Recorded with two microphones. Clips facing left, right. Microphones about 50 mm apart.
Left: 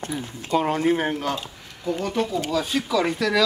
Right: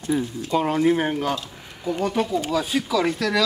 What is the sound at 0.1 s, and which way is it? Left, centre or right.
Speech, centre.